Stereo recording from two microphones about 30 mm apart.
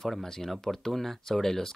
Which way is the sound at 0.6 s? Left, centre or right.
Centre.